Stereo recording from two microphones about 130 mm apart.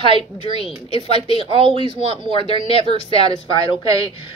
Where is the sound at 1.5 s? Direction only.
45° right (ahead or behind).